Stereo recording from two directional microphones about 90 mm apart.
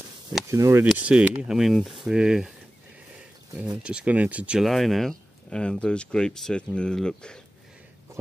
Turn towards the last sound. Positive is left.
turn(degrees=10)  # may be behind; listen again after turning